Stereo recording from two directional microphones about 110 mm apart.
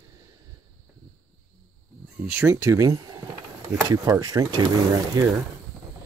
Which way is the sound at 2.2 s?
15° right (ahead or behind).